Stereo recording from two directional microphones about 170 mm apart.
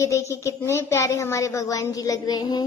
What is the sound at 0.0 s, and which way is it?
A woman's voice, 15° left (ahead or behind).